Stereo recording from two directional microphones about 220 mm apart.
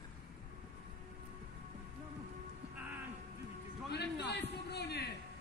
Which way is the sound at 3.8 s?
50° left (ahead or behind).